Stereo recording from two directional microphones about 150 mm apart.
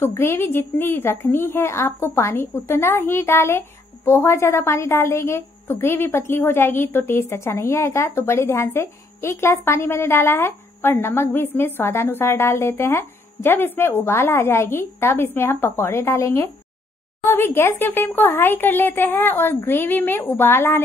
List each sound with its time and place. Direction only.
0.0 s a woman's voice: 15° left (ahead or behind)